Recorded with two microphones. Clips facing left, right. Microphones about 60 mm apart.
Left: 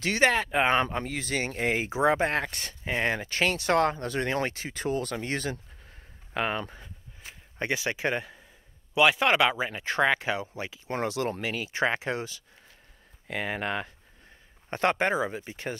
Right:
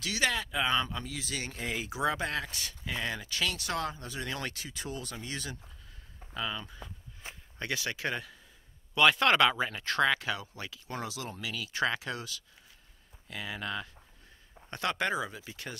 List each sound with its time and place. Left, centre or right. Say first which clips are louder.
0.0 s speech: left 7 dB; left
2.4 s speech: left 5 dB; left
4.3 s speech: left 8 dB; left
6.3 s speech: left 7 dB; left
7.5 s speech: left 6 dB; left
8.9 s speech: left 2 dB; centre
11.0 s speech: left 10 dB; left
11.5 s speech: even; left
13.3 s speech: left 7 dB; left
14.7 s speech: left 6 dB; left